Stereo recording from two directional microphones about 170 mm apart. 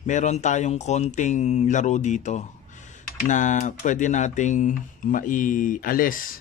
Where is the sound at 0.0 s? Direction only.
45° left (ahead or behind).